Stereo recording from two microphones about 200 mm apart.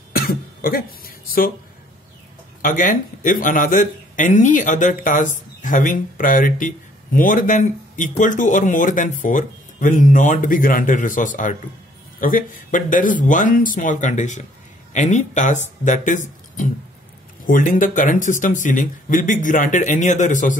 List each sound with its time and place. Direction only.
0.1 s speech: 50° left (ahead or behind)
2.6 s speech: 40° left (ahead or behind)